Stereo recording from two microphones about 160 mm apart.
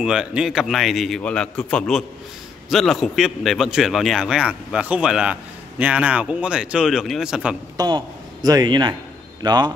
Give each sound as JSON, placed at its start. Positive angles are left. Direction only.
{"t": 0.0, "sound": "a man's voice", "side_deg": -5}
{"t": 7.7, "sound": "a man's voice", "side_deg": -25}